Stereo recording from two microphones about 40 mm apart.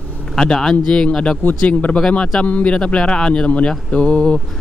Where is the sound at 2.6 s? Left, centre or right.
Left.